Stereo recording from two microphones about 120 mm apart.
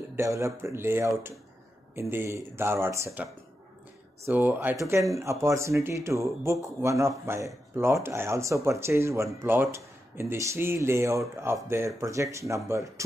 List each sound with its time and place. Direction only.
0.1 s speech: 25° right (ahead or behind)
4.3 s speech: 15° right (ahead or behind)